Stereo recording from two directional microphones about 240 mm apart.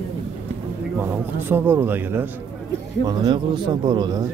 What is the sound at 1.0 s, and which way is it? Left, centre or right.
A man's voice, centre.